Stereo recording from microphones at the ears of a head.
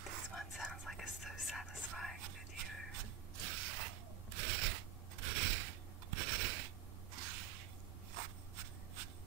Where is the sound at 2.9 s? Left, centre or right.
Right.